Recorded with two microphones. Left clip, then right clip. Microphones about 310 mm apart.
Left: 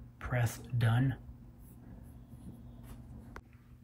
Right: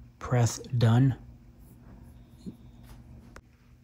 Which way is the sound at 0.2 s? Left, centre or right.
Centre.